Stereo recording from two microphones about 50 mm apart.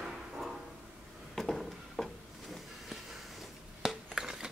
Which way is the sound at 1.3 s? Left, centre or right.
Centre.